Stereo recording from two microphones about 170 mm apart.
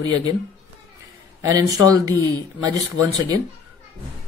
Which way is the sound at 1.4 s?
20° right (ahead or behind).